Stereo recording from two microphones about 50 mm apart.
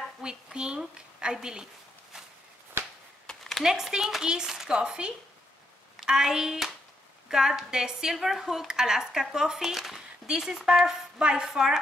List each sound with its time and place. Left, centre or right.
0.2 s a woman's voice: centre
2.8 s a sound: centre
3.5 s a woman's voice: centre